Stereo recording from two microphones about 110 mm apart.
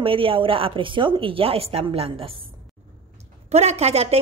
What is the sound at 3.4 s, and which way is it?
Speech, 80° right.